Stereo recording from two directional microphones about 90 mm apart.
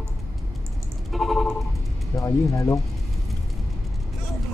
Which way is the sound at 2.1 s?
35° left (ahead or behind).